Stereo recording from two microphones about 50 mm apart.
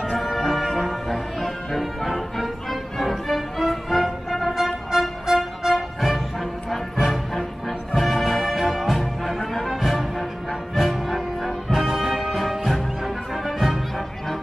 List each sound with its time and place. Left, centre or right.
0.2 s music: centre